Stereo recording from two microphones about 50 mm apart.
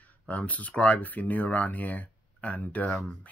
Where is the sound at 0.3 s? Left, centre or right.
Left.